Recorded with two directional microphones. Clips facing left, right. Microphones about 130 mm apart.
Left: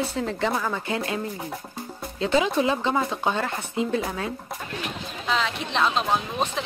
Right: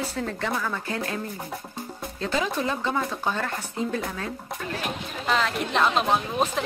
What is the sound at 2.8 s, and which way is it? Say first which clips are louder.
Speech: left 3 dB; 25° left (ahead or behind).